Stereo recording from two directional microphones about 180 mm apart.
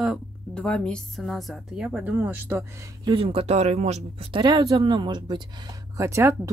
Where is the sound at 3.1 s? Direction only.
30° right (ahead or behind).